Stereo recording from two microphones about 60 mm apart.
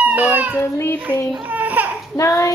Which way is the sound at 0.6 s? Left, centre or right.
Left.